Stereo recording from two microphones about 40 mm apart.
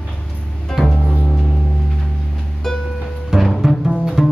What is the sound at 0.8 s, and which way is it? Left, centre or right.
Music, centre.